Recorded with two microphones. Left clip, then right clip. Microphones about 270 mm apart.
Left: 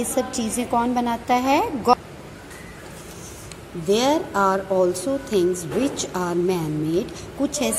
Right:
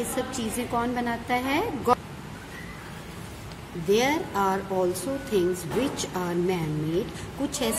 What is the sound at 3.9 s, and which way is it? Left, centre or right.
Speech, centre.